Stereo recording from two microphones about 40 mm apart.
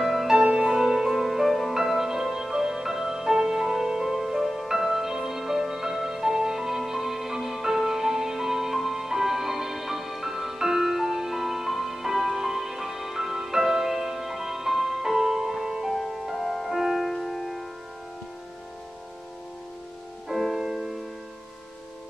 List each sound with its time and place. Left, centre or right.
0.0 s music: centre
0.4 s music: centre
20.5 s music: centre